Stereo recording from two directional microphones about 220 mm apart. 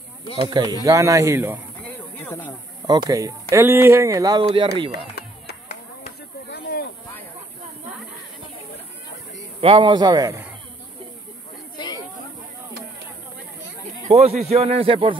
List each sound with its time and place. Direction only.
0.4 s speech: 20° right (ahead or behind)
2.2 s speech: 10° left (ahead or behind)
2.9 s speech: 20° right (ahead or behind)
6.5 s a sound: 45° left (ahead or behind)
9.6 s speech: 25° right (ahead or behind)
11.7 s a sound: 20° left (ahead or behind)
14.0 s speech: 30° right (ahead or behind)